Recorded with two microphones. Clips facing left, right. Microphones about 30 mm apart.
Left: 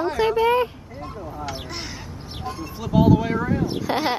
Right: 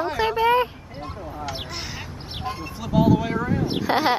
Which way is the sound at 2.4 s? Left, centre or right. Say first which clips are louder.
Right 1 dB; right.